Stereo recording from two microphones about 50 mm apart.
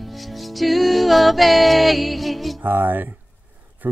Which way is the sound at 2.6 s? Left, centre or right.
Right.